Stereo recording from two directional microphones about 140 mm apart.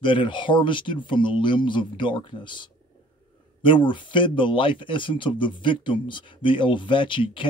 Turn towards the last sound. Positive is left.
turn(degrees=35)  # may be behind; listen again after turning